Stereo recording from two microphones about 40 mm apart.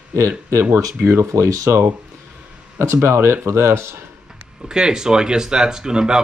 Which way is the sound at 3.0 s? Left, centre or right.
Right.